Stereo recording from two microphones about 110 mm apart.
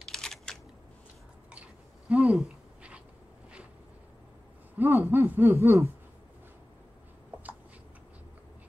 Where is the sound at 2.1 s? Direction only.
10° right (ahead or behind).